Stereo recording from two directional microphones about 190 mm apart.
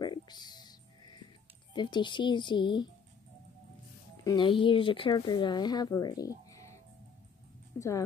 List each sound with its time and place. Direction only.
0.0 s music: 20° left (ahead or behind)
1.7 s speech: 25° left (ahead or behind)
4.2 s speech: 20° left (ahead or behind)